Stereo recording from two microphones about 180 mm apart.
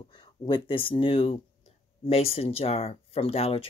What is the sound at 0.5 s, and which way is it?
Speech, 30° left (ahead or behind).